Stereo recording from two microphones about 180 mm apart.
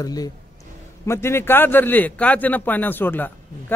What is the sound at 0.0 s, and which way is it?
A man's voice, 20° left (ahead or behind).